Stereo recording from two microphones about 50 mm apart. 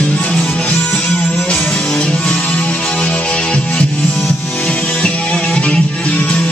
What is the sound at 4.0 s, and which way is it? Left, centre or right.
Music, left.